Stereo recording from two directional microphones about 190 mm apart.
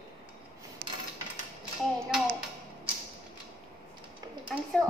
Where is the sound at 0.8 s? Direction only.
50° right (ahead or behind).